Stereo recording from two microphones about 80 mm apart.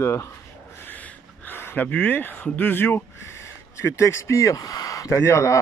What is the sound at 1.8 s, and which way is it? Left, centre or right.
Speech, left.